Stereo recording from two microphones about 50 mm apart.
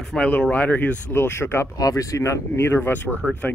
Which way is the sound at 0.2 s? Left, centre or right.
Left.